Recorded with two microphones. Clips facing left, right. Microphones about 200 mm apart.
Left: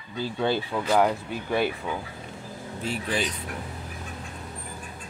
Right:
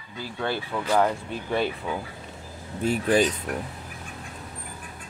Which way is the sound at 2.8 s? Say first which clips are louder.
Right 8 dB; 45° right (ahead or behind).